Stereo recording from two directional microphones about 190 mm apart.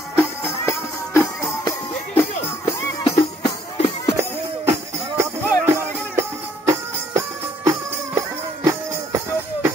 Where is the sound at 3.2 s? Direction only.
25° left (ahead or behind).